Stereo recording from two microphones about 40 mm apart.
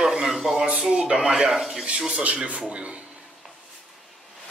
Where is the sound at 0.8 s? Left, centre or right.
Centre.